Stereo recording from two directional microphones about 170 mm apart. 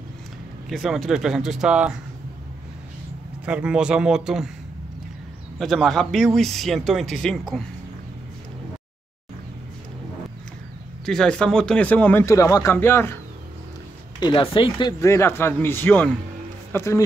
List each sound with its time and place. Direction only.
0.7 s speech: centre (ahead or behind)
3.4 s speech: 5° right (ahead or behind)
5.6 s speech: centre (ahead or behind)
11.1 s a man's voice: 5° left (ahead or behind)
14.2 s a man's voice: 30° left (ahead or behind)